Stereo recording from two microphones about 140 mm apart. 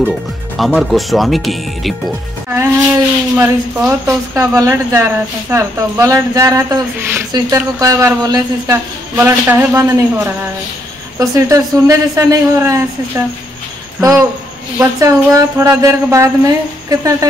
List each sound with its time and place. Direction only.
0.6 s speech: centre (ahead or behind)
2.5 s speech: 15° right (ahead or behind)
14.8 s speech: 20° right (ahead or behind)